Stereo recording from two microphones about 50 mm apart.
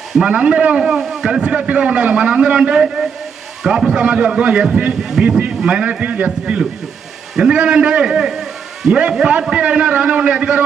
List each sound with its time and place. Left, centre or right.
0.2 s a man's voice: right
5.9 s a man's voice: right